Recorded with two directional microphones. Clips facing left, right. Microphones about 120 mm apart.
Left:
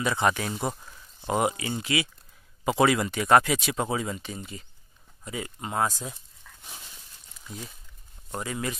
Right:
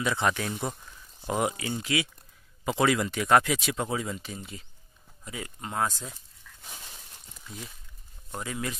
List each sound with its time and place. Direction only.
0.0 s speech: 5° left (ahead or behind)
0.5 s speech: 20° left (ahead or behind)
1.3 s speech: 5° left (ahead or behind)
7.4 s speech: centre (ahead or behind)